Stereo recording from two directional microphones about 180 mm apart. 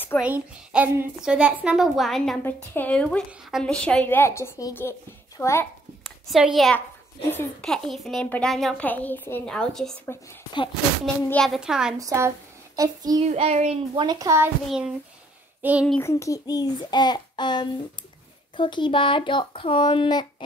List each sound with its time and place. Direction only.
0.2 s a woman's voice: 10° right (ahead or behind); by 5.7 s 15° left (ahead or behind)
6.0 s a woman's voice: centre (ahead or behind)
11.2 s a woman's voice: 5° left (ahead or behind)
12.0 s a woman's voice: 20° right (ahead or behind)
13.2 s speech: 35° right (ahead or behind)
14.0 s a child's voice: 20° right (ahead or behind)
15.6 s a sound: 10° right (ahead or behind)
16.0 s speech: 15° left (ahead or behind)